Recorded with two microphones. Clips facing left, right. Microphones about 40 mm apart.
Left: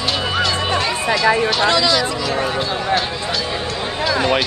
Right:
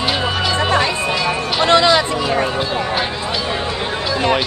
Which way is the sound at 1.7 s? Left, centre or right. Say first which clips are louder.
Right 4 dB; right.